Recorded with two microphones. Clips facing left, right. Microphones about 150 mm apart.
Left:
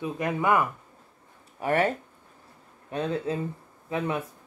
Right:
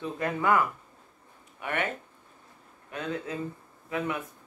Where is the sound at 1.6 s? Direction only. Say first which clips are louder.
Left 7 dB; 35° left (ahead or behind).